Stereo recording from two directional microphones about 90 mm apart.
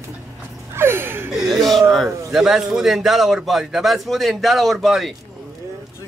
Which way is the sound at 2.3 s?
5° right (ahead or behind).